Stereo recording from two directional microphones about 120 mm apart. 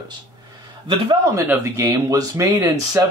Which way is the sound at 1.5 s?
20° right (ahead or behind).